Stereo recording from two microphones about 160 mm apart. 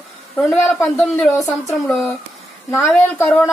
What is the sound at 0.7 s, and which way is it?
A woman's voice, 10° left (ahead or behind).